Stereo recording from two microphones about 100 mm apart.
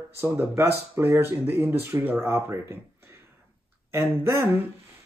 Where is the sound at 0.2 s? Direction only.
25° right (ahead or behind).